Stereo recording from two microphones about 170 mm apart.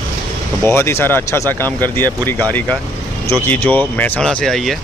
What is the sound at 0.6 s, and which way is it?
Speech, 15° left (ahead or behind).